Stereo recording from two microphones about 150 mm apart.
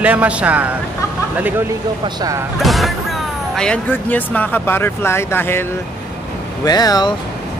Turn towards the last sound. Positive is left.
turn(degrees=25)  # may be behind; listen again after turning